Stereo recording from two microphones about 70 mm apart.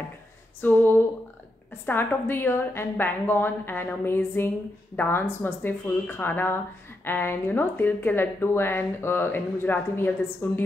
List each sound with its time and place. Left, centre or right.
0.6 s female singing: left
1.9 s speech: left